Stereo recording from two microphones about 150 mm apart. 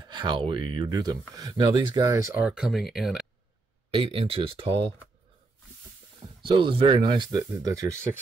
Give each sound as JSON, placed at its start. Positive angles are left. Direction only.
{"t": 0.0, "sound": "speech", "side_deg": -30}
{"t": 2.3, "sound": "speech", "side_deg": -10}
{"t": 3.9, "sound": "speech", "side_deg": -35}
{"t": 6.4, "sound": "speech", "side_deg": -35}